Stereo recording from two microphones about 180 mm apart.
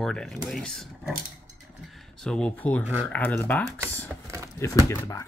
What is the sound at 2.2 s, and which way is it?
Speech, 5° left (ahead or behind).